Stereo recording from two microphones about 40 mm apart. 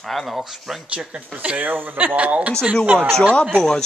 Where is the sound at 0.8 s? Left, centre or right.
Right.